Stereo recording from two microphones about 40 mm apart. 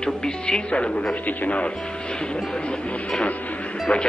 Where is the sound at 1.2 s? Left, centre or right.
Left.